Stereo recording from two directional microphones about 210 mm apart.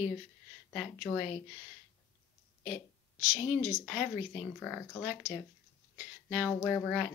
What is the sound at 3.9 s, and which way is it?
Speech, 5° right (ahead or behind).